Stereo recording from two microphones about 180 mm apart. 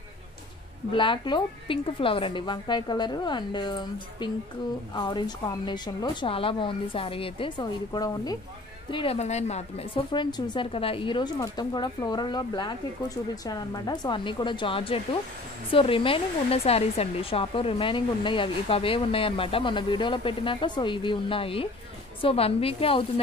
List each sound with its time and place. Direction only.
0.9 s speech: 25° left (ahead or behind)
8.9 s a woman's voice: 30° left (ahead or behind)
10.1 s a woman's voice: 25° left (ahead or behind)